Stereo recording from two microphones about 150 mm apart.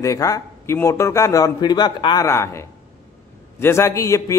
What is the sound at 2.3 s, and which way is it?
Speech, 20° left (ahead or behind).